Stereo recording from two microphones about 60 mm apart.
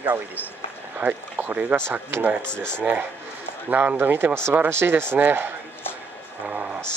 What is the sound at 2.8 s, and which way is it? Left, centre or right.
Speech, right.